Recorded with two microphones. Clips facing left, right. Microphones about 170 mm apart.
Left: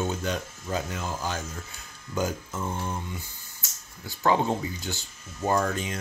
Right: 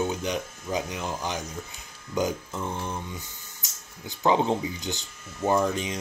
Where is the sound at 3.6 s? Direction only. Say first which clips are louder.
Right 1 dB; 20° right (ahead or behind).